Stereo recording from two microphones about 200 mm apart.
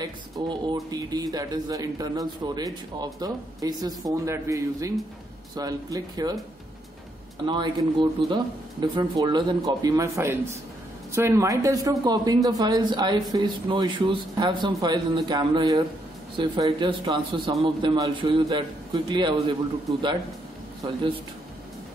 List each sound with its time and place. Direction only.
0.0 s speech: 20° right (ahead or behind)
7.4 s speech: 25° right (ahead or behind)
20.8 s speech: 25° right (ahead or behind)